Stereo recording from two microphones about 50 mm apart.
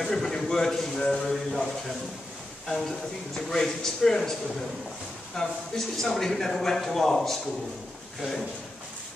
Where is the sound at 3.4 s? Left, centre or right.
Centre.